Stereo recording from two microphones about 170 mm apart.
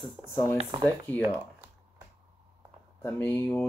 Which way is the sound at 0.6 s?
30° right (ahead or behind).